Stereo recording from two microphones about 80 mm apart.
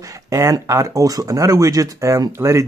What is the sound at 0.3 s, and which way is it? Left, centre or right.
Speech, right.